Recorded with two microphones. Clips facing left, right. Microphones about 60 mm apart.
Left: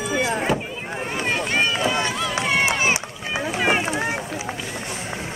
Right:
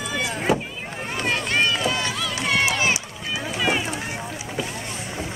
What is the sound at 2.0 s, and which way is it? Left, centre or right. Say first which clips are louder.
Run: left 3 dB; centre.